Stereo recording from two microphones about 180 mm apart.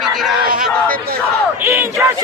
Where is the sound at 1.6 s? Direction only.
15° right (ahead or behind).